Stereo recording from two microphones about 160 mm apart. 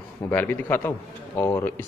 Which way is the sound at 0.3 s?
10° left (ahead or behind).